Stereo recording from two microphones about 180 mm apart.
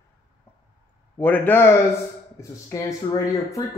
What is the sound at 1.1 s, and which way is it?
Speech, 10° left (ahead or behind).